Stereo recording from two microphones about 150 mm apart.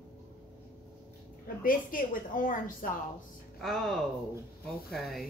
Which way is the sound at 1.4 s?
65° left (ahead or behind).